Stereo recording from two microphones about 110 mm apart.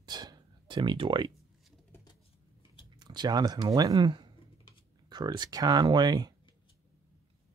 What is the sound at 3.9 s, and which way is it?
Speech, 45° right (ahead or behind).